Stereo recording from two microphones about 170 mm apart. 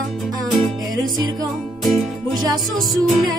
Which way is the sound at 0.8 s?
20° right (ahead or behind).